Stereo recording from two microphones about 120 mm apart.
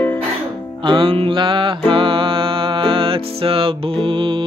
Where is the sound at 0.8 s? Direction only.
45° right (ahead or behind).